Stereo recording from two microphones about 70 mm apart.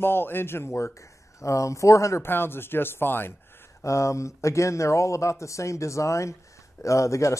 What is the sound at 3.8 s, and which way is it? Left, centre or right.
Speech, left.